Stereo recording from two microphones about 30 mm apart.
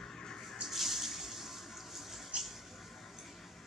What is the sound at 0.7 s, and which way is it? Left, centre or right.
Water, centre.